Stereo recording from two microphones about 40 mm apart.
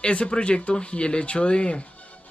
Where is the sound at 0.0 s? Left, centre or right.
Left.